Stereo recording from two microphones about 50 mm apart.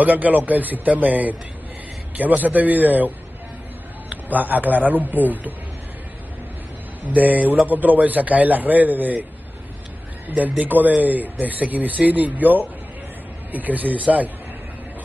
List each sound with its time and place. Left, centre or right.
0.0 s a man's voice: right
4.1 s a man's voice: right
7.2 s a man's voice: right
10.2 s a man's voice: right